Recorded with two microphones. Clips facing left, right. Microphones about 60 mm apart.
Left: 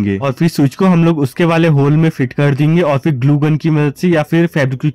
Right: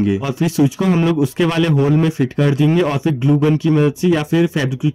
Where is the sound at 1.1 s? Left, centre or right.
Left.